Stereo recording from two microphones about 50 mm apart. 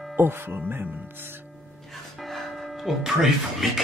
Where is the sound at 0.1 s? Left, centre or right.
Right.